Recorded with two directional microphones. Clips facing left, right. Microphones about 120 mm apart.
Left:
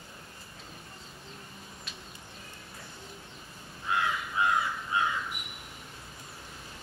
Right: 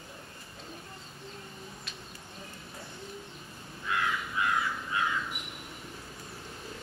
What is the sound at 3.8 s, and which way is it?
Crow, 25° left (ahead or behind).